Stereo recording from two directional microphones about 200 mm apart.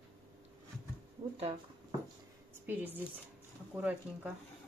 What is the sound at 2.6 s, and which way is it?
Speech, 10° right (ahead or behind).